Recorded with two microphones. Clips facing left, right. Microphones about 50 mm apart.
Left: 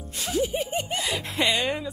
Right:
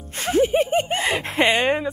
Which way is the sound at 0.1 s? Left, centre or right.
Right.